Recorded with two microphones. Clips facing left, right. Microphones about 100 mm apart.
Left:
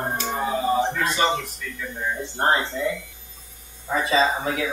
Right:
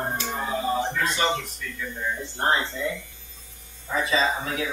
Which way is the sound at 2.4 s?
35° left (ahead or behind).